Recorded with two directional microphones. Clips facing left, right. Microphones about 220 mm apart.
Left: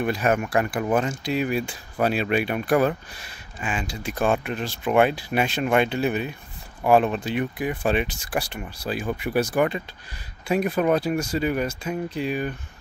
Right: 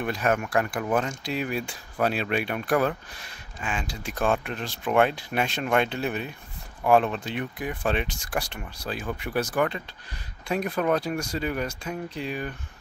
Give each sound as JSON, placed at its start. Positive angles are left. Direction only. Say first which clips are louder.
{"t": 0.0, "sound": "speech", "louder": "left 3 dB", "side_deg": 5}